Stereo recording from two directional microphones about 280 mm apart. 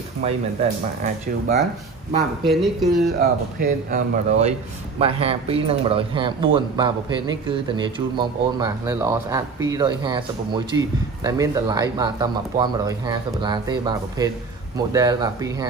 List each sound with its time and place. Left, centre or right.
0.2 s speech: right
2.4 s speech: centre
3.2 s speech: right; by 15.5 s centre